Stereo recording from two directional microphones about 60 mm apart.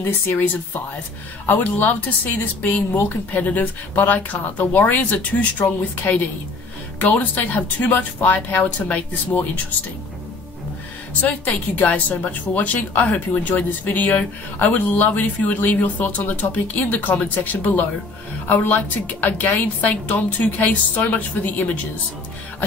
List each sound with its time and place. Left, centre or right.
1.4 s speech: left
11.2 s speech: left